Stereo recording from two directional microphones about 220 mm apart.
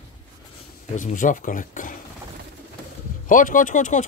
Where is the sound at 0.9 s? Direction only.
35° left (ahead or behind).